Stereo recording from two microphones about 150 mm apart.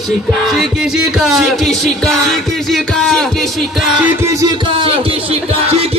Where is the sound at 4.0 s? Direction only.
20° right (ahead or behind); by 5.8 s 45° right (ahead or behind).